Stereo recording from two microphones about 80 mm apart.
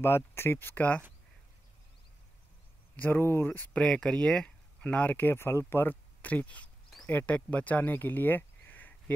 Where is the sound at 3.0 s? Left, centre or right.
Left.